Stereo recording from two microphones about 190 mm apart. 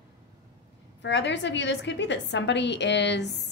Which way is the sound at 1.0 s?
70° left (ahead or behind).